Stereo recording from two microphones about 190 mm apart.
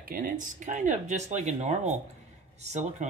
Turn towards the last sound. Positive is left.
turn(degrees=-40)  # may be behind; listen again after turning